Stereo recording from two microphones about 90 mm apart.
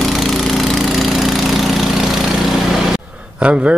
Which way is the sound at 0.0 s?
Centre (ahead or behind).